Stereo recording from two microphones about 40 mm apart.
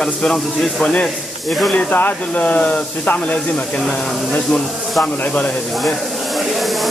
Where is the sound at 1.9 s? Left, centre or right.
Left.